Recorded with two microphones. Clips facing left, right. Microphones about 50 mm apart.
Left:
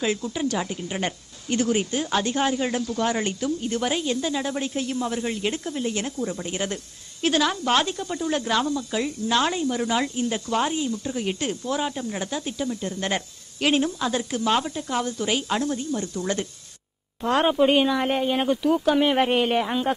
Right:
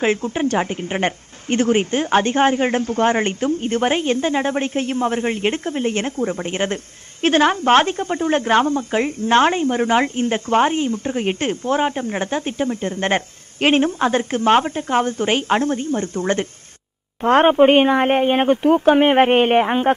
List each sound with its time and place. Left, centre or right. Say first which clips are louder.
0.0 s a woman's voice: right 6 dB; right